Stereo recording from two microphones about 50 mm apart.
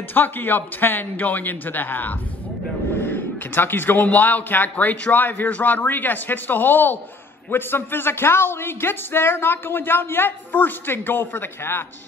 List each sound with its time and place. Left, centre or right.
0.1 s a man's voice: left